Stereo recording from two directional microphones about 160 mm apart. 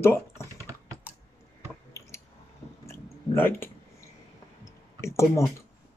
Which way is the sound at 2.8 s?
15° left (ahead or behind).